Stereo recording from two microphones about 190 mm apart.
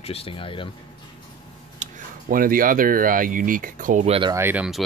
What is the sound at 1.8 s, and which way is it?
Tick-tock, 40° right (ahead or behind).